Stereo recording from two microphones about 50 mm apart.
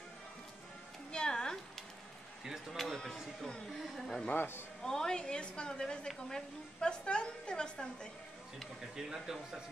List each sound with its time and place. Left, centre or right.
1.1 s a sound: centre
2.4 s a sound: centre
2.9 s a woman's voice: centre
4.3 s a man's voice: left
4.8 s a woman's voice: centre
8.9 s speech: centre